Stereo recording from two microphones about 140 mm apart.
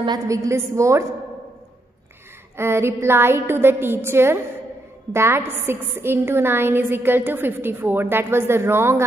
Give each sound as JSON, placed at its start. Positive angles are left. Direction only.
{"t": 0.0, "sound": "a woman's voice", "side_deg": -25}
{"t": 2.5, "sound": "a woman's voice", "side_deg": -20}